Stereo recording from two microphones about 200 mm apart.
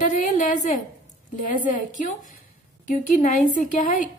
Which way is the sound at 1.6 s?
40° left (ahead or behind).